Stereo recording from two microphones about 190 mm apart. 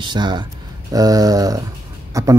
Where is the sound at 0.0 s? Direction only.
25° right (ahead or behind).